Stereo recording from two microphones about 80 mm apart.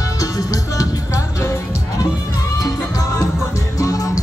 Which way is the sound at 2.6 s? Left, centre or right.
Left.